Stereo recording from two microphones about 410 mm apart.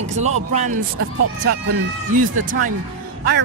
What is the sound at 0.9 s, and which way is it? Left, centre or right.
Speech, right.